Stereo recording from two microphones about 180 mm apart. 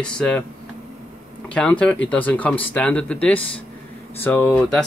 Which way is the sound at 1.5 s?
5° left (ahead or behind).